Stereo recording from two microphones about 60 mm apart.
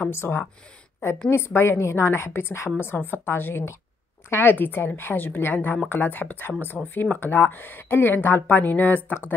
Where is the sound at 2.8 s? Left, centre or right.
Left.